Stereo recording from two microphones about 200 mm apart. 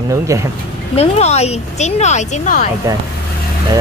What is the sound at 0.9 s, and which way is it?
Speech, 30° left (ahead or behind).